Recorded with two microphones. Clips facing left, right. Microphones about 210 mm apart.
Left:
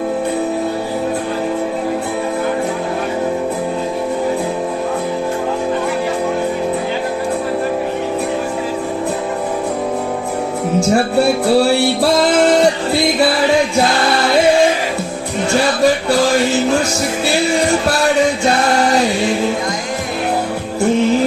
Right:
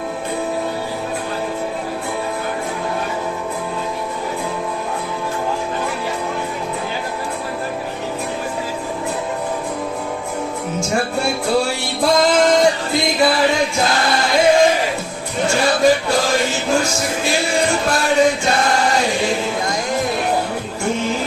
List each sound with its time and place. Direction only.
11.1 s music: 35° left (ahead or behind)